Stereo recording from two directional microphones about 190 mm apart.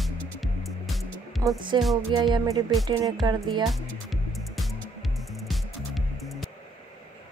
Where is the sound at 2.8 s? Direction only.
20° right (ahead or behind).